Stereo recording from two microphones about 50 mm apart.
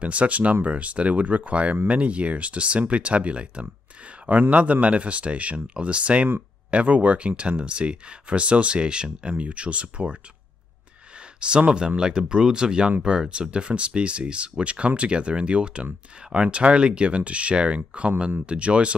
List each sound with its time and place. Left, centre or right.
0.0 s speech: right
11.3 s speech: centre